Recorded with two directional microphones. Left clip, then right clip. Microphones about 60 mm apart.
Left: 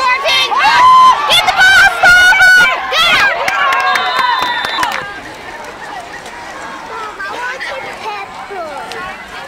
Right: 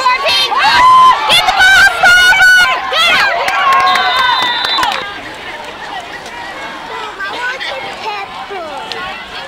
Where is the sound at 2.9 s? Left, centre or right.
Left.